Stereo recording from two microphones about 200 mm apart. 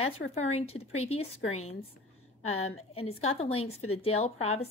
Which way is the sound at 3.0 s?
30° left (ahead or behind).